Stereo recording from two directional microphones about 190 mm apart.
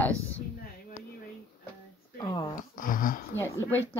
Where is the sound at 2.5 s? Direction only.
45° left (ahead or behind).